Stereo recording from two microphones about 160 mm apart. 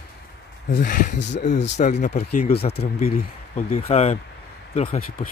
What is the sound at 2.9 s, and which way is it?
Speech, 45° left (ahead or behind).